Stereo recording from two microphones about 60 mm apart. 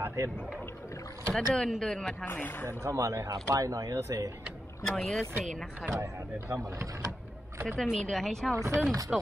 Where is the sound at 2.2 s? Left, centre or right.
Left.